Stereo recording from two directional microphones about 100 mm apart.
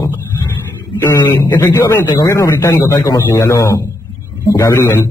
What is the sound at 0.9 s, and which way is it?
Speech, 30° left (ahead or behind).